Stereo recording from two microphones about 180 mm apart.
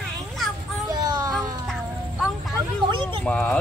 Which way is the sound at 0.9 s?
20° right (ahead or behind).